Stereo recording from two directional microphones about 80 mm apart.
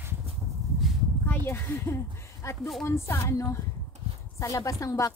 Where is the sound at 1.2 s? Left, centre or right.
Left.